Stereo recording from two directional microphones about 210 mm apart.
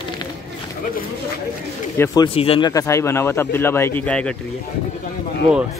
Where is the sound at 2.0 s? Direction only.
10° left (ahead or behind).